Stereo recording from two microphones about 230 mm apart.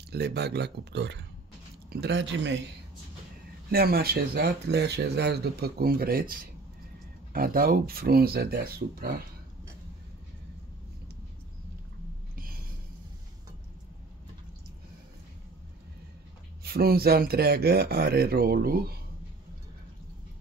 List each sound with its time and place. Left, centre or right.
0.1 s speech: right
3.7 s speech: right
16.6 s speech: right